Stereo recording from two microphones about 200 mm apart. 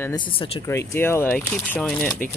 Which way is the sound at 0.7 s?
10° left (ahead or behind).